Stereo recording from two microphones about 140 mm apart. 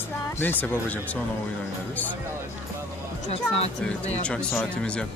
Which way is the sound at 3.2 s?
45° left (ahead or behind).